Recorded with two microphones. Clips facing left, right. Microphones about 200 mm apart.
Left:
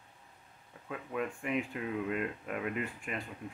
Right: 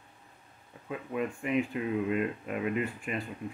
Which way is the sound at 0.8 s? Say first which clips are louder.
Right 3 dB; 5° right (ahead or behind).